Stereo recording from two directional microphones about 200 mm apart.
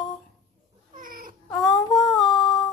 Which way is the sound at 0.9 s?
40° right (ahead or behind).